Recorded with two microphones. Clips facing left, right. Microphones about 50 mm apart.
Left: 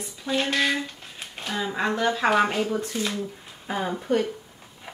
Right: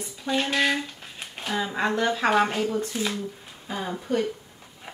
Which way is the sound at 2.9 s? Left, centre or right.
Centre.